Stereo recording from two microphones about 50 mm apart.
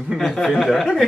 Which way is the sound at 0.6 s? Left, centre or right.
Centre.